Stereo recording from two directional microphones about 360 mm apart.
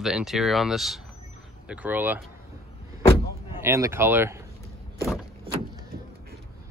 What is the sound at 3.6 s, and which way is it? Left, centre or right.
Speech, centre.